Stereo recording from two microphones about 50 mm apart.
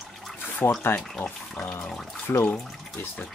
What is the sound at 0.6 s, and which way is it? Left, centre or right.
Speech, left.